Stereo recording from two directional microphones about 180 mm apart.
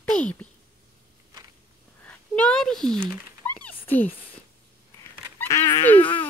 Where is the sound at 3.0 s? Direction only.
10° right (ahead or behind).